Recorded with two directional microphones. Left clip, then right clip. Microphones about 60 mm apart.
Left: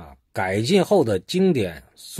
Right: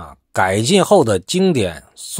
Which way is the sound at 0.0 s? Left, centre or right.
Right.